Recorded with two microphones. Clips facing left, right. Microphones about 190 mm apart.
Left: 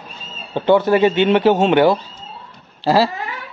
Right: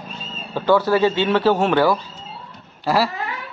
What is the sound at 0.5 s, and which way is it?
A man's voice, 20° left (ahead or behind).